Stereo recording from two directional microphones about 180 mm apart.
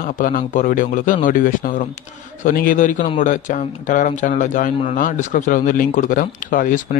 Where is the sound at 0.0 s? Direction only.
50° left (ahead or behind).